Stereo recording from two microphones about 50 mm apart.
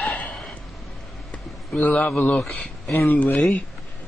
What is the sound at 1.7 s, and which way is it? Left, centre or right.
Speech, left.